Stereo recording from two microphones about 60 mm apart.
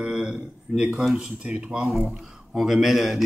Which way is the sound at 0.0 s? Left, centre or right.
Centre.